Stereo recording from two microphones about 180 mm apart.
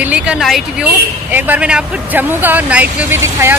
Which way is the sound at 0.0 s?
5° right (ahead or behind).